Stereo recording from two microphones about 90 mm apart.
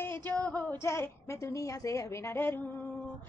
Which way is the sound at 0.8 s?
30° left (ahead or behind).